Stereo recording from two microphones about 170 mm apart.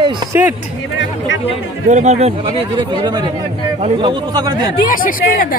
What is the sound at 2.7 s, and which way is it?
Speech, 25° right (ahead or behind).